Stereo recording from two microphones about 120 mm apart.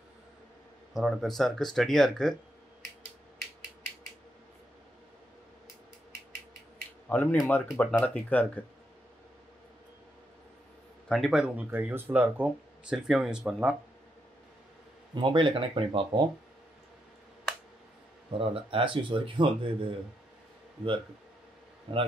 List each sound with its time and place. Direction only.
0.9 s speech: centre (ahead or behind)
7.1 s speech: 15° left (ahead or behind)
11.1 s speech: centre (ahead or behind)
15.1 s speech: 40° right (ahead or behind)
18.4 s speech: 50° right (ahead or behind)
21.9 s speech: 45° right (ahead or behind)